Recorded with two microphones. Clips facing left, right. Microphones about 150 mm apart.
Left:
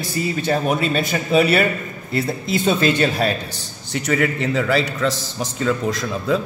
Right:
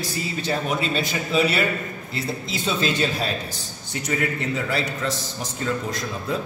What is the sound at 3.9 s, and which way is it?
A man's voice, 80° left.